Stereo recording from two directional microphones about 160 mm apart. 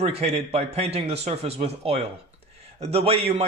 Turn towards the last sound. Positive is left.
turn(degrees=-40)  # may be behind; listen again after turning